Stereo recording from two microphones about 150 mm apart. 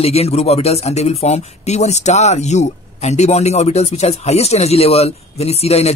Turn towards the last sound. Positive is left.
turn(degrees=45)  # may be behind; listen again after turning